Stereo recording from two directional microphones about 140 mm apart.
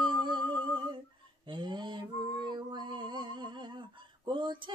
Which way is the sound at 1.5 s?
35° right (ahead or behind).